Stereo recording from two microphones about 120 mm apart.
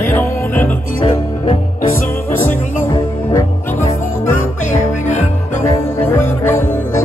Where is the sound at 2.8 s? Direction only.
25° left (ahead or behind).